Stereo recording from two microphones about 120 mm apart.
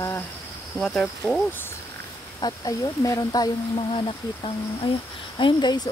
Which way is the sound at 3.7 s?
45° left (ahead or behind).